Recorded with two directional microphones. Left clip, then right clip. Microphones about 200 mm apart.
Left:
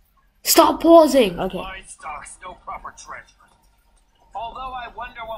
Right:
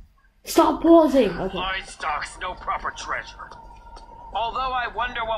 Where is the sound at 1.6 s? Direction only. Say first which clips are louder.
Right 6 dB; 30° right (ahead or behind).